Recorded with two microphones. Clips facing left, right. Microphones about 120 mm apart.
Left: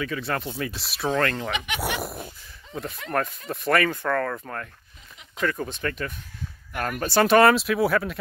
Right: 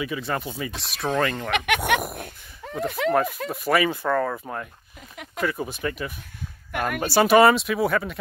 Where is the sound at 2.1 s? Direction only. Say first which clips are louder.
Right 1 dB; 65° right (ahead or behind).